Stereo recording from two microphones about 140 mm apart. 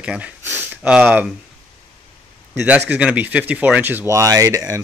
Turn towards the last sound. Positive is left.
turn(degrees=-25)  # may be behind; listen again after turning